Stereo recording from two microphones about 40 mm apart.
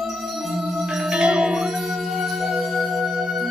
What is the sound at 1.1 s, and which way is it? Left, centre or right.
Marimba, right.